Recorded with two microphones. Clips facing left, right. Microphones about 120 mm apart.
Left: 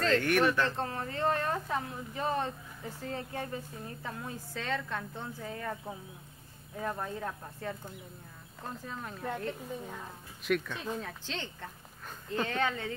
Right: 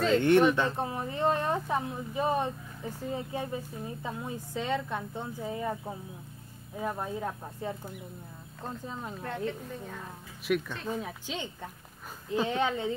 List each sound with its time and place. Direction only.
0.2 s speech: 20° right (ahead or behind)
9.5 s a woman's voice: 10° left (ahead or behind)
10.5 s speech: 5° right (ahead or behind)